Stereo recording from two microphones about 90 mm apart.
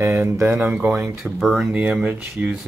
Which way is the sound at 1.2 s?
5° right (ahead or behind).